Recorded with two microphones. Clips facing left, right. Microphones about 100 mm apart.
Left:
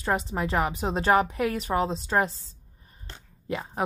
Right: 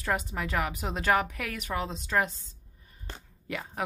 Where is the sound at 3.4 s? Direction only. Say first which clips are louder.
Left 5 dB; 30° left (ahead or behind).